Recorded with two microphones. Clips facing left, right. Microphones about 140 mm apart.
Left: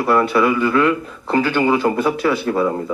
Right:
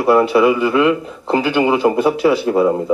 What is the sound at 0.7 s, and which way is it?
A man's voice, 25° right (ahead or behind).